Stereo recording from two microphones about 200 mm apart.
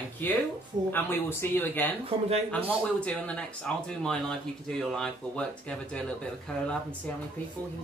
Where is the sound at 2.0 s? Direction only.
30° right (ahead or behind).